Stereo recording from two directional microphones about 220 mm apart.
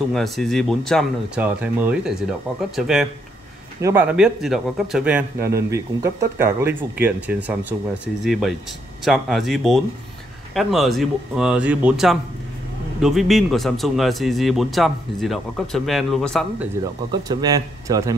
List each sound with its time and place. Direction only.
0.1 s speech: centre (ahead or behind)
16.8 s speech: 20° right (ahead or behind)